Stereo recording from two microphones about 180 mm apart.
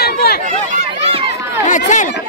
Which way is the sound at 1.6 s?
45° left (ahead or behind).